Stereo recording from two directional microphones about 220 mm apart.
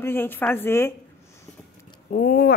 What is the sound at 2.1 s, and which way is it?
Speech, 40° left (ahead or behind).